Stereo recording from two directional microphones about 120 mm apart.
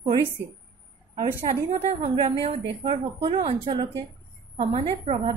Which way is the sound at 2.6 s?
45° right (ahead or behind).